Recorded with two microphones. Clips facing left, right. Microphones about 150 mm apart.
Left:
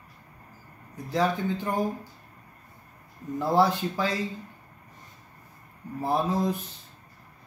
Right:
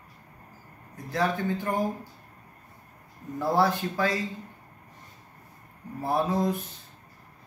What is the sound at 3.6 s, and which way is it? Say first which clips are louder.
Speech: left 2 dB; 20° left (ahead or behind).